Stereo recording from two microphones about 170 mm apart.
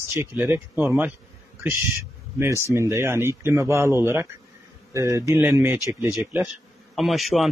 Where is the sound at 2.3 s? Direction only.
15° right (ahead or behind).